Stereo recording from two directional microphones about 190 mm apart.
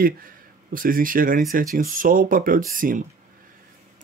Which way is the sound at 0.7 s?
50° right (ahead or behind).